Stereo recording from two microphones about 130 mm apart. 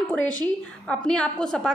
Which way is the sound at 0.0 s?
10° left (ahead or behind).